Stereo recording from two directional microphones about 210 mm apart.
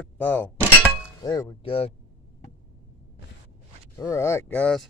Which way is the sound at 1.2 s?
20° left (ahead or behind).